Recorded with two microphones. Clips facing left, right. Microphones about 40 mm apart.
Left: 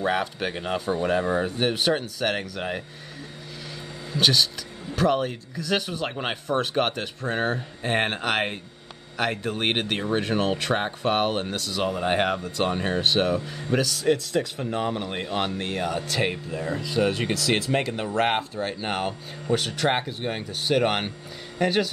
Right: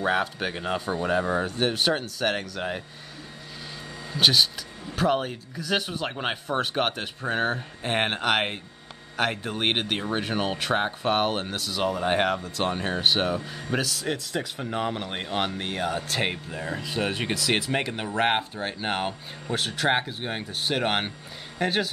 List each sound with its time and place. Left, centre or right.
0.0 s speech: centre
4.1 s speech: centre
16.1 s speech: right